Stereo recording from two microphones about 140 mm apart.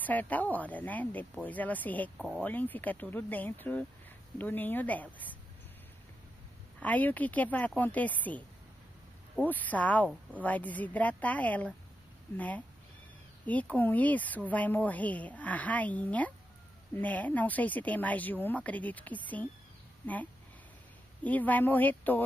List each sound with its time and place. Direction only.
0.0 s a woman's voice: 10° left (ahead or behind)
6.8 s a woman's voice: 10° left (ahead or behind)
21.2 s a woman's voice: 10° left (ahead or behind)